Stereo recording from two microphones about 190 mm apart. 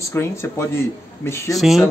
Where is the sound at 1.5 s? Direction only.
Centre (ahead or behind).